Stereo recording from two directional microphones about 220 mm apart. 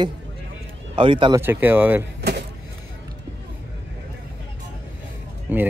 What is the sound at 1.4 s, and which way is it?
Speech, 10° right (ahead or behind).